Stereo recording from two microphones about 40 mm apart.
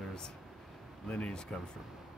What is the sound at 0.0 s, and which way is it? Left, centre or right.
Vehicle, centre.